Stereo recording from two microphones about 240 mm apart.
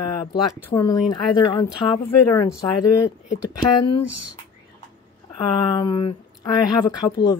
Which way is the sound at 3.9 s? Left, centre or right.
Left.